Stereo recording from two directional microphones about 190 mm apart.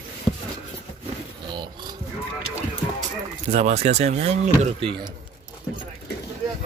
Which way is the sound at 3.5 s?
35° right (ahead or behind).